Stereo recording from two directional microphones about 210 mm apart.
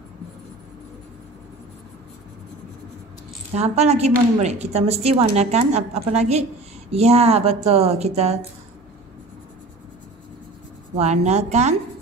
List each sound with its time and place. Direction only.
3.5 s a woman's voice: 30° right (ahead or behind)
11.0 s a woman's voice: 30° right (ahead or behind)